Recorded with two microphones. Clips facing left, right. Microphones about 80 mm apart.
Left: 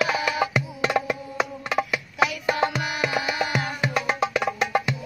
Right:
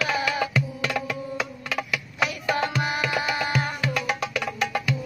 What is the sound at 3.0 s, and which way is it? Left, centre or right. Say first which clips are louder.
Music: left 1 dB; left.